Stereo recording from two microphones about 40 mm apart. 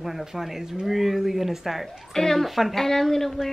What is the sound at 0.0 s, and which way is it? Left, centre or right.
Speech, centre.